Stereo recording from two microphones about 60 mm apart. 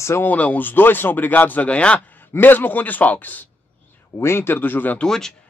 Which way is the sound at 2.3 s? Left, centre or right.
Left.